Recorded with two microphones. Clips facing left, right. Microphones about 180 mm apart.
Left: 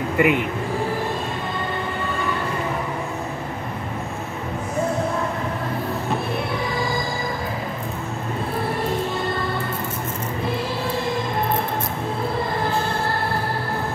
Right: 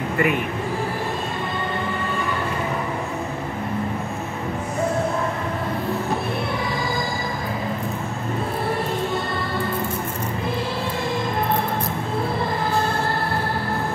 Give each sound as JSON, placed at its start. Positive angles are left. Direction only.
{"t": 0.2, "sound": "speech", "side_deg": 15}